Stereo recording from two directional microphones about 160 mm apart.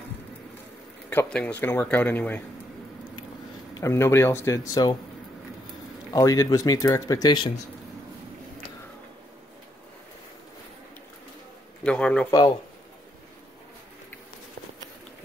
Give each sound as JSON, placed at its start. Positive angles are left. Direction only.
{"t": 1.1, "sound": "speech", "side_deg": 10}
{"t": 3.7, "sound": "speech", "side_deg": 15}
{"t": 6.1, "sound": "speech", "side_deg": 20}
{"t": 11.8, "sound": "speech", "side_deg": 5}
{"t": 12.3, "sound": "speech", "side_deg": 25}